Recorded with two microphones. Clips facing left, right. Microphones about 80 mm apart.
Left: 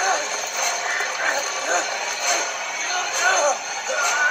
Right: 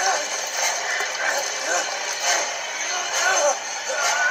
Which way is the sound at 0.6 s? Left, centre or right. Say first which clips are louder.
Left 1 dB; left.